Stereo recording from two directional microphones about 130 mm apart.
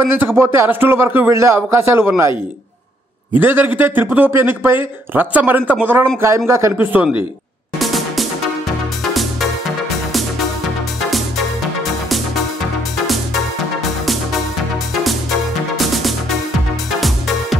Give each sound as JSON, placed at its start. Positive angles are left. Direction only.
{"t": 0.2, "sound": "a man's voice", "side_deg": -20}
{"t": 3.3, "sound": "a man's voice", "side_deg": -15}
{"t": 7.8, "sound": "music", "side_deg": 0}
{"t": 11.1, "sound": "music", "side_deg": 0}
{"t": 15.7, "sound": "music", "side_deg": 0}